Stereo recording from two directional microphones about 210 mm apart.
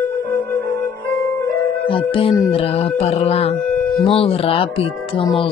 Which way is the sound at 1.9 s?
25° left (ahead or behind).